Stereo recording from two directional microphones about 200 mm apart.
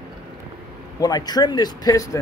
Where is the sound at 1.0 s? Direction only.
20° left (ahead or behind).